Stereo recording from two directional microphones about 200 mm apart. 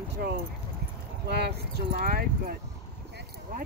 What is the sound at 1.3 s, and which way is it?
Speech, 55° right (ahead or behind).